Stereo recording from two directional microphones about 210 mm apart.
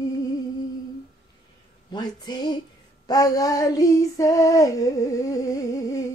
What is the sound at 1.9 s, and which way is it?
Speech, 20° left (ahead or behind).